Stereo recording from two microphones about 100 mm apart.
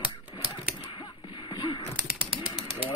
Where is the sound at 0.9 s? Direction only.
55° left (ahead or behind).